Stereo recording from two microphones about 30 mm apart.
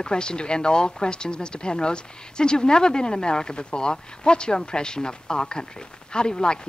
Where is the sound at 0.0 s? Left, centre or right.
Left.